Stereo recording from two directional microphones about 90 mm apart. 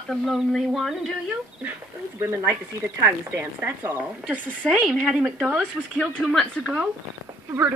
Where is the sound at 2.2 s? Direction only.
20° right (ahead or behind).